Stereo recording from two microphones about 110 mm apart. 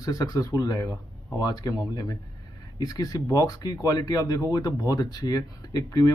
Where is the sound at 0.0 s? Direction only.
30° left (ahead or behind).